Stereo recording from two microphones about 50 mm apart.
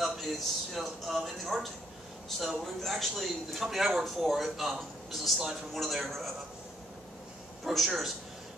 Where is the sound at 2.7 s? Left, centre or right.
Centre.